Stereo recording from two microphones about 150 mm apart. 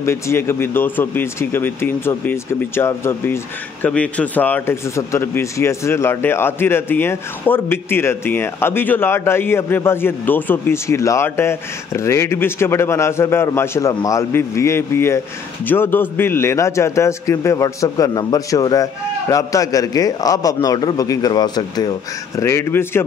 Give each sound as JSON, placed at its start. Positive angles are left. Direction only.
{"t": 0.0, "sound": "a man's voice", "side_deg": 15}
{"t": 22.4, "sound": "speech", "side_deg": 15}